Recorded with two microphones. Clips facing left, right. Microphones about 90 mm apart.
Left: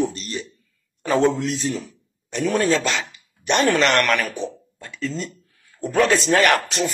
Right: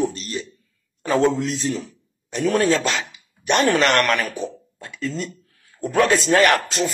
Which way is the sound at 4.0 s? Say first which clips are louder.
Even; centre (ahead or behind).